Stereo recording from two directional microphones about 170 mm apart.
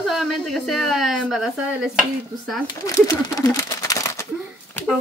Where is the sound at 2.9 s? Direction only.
20° left (ahead or behind).